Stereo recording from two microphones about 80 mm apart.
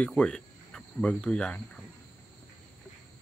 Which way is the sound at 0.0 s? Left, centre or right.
Centre.